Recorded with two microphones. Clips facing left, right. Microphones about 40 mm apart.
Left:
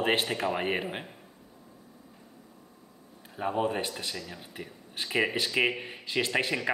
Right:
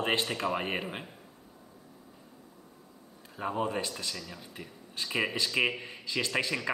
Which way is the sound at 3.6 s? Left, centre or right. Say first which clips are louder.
Left 2 dB; left.